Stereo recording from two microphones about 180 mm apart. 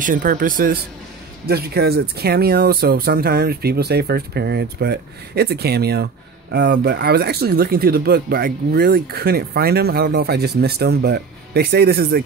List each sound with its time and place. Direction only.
0.0 s speech: 50° right (ahead or behind)